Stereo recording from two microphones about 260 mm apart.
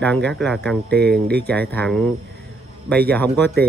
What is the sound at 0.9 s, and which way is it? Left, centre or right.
Speech, right.